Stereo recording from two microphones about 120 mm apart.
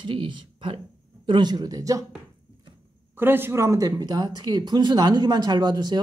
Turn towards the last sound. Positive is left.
turn(degrees=-35)  # may be behind; listen again after turning